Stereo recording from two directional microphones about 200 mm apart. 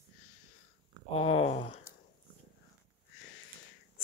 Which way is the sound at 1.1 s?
30° left (ahead or behind).